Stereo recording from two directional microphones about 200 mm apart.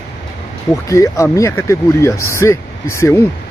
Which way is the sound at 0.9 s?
15° left (ahead or behind).